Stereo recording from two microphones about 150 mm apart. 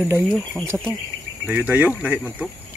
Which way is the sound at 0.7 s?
5° right (ahead or behind).